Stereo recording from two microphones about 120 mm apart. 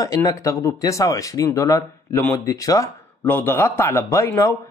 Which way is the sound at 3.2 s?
15° left (ahead or behind).